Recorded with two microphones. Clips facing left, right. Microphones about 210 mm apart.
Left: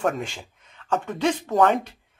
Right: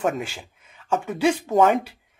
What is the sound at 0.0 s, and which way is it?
Speech, 5° right (ahead or behind).